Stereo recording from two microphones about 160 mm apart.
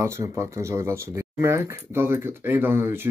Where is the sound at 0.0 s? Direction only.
20° right (ahead or behind).